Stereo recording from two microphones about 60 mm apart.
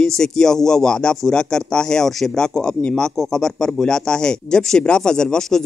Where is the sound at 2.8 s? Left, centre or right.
Left.